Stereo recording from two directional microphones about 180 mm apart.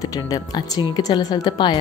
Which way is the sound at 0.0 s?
20° left (ahead or behind).